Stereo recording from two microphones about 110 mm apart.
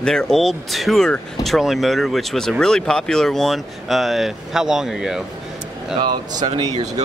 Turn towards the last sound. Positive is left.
turn(degrees=-45)  # may be behind; listen again after turning